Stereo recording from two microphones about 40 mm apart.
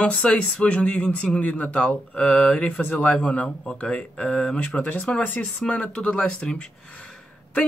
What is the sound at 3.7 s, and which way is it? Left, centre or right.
Speech, left.